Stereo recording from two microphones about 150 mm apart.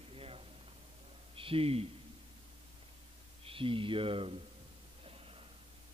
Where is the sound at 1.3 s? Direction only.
35° right (ahead or behind).